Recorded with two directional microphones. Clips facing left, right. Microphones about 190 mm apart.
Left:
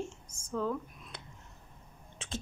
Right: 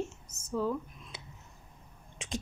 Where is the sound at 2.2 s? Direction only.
15° right (ahead or behind).